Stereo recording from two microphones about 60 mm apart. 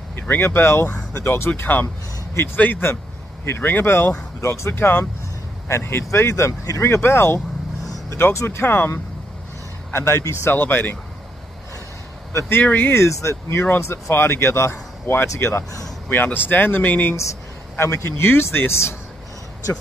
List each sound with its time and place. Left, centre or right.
0.1 s speech: left
1.5 s speech: left
6.8 s speech: left
12.4 s speech: left
13.0 s speech: left
16.3 s speech: left
17.7 s speech: left